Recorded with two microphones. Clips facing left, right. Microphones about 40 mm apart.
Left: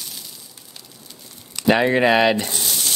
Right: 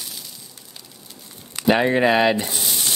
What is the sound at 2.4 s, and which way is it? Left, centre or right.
Frying, centre.